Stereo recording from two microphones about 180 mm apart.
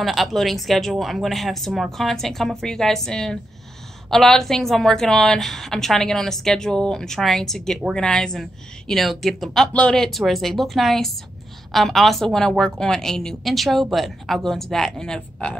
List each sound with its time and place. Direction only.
0.0 s a woman's voice: centre (ahead or behind)